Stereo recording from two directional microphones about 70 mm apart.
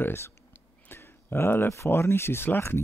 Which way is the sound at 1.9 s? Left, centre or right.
Left.